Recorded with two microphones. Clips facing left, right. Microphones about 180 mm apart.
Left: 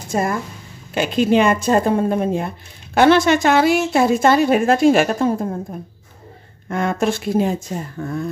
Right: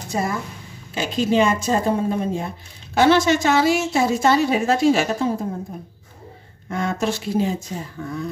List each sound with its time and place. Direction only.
0.1 s speech: 50° left (ahead or behind)
6.7 s speech: 55° left (ahead or behind)